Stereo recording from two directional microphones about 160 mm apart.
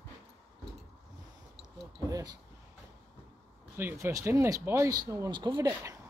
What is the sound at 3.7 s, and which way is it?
Speech, 15° right (ahead or behind).